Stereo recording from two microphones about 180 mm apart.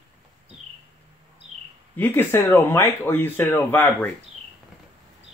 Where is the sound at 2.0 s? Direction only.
10° left (ahead or behind).